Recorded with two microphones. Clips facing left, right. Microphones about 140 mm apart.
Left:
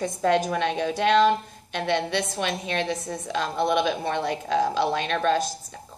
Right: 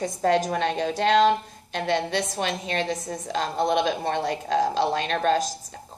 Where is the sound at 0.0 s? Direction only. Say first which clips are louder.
Even; 40° right (ahead or behind).